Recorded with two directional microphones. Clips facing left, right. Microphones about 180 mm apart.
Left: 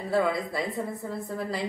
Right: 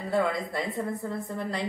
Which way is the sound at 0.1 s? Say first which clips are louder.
Left 1 dB; centre (ahead or behind).